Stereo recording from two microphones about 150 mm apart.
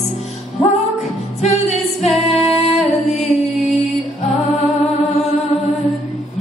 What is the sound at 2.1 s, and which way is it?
Music, centre (ahead or behind).